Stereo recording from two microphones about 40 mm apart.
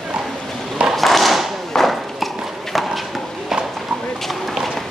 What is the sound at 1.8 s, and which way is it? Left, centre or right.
Clip-clop, centre.